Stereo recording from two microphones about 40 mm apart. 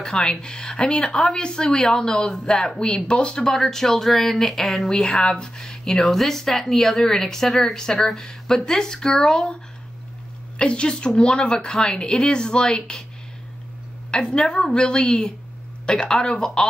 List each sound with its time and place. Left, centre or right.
0.0 s a woman's voice: centre
3.5 s speech: centre
5.0 s speech: left
10.6 s a woman's voice: left
14.3 s a woman's voice: left